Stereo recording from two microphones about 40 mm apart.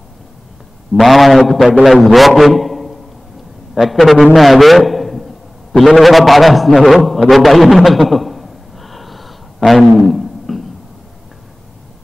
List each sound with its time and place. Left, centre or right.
0.9 s a man's voice: centre
4.0 s a man's voice: centre
7.2 s a sound: centre